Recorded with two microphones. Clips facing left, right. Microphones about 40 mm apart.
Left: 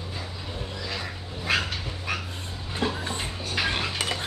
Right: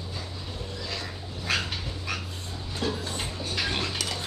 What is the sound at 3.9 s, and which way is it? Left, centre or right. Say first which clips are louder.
Cutlery: left 3 dB; left.